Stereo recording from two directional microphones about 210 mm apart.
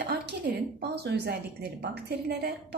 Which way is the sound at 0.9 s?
50° right (ahead or behind).